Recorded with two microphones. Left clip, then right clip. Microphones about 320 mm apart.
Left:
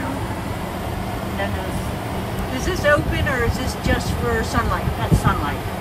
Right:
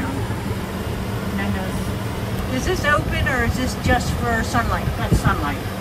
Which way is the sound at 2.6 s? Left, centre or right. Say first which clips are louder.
Left 2 dB; centre.